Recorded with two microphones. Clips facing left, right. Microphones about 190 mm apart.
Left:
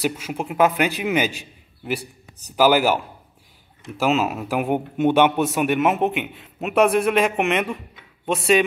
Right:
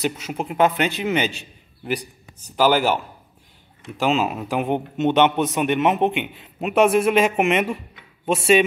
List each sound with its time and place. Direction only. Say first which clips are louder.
0.2 s a man's voice: even; 5° left (ahead or behind)